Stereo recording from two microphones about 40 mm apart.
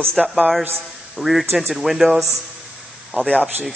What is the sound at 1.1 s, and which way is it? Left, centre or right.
A man's voice, centre.